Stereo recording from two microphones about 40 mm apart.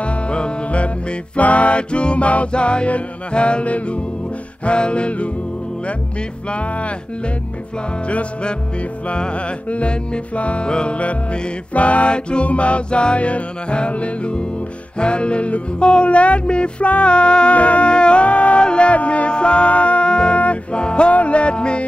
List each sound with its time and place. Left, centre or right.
0.0 s music: left
6.5 s music: left
8.1 s music: left